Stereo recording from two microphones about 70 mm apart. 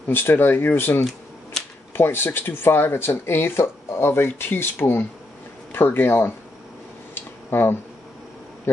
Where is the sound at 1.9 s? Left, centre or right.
Left.